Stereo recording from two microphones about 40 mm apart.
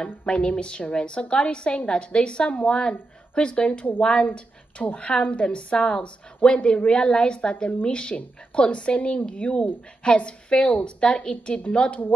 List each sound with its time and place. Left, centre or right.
0.3 s a woman's voice: left